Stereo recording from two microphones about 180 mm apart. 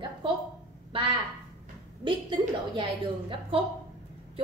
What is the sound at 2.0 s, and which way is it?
A woman's voice, 25° right (ahead or behind).